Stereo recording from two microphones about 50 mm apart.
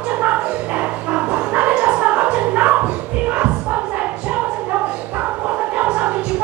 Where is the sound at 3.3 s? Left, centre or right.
Right.